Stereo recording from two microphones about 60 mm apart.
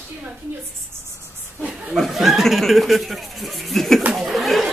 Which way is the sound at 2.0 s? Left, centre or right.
Centre.